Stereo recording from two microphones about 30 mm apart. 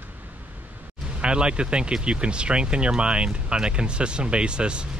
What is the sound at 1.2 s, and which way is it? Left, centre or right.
Speech, right.